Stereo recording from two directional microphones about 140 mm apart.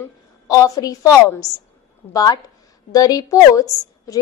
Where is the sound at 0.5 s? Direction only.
25° left (ahead or behind).